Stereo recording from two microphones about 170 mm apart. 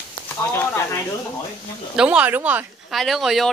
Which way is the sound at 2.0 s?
5° right (ahead or behind).